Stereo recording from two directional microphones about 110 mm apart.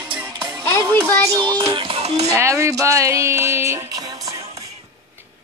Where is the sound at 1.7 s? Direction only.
60° right (ahead or behind); by 2.3 s 75° right (ahead or behind).